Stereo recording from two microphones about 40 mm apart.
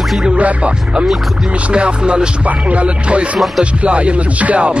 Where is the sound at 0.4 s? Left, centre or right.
Right.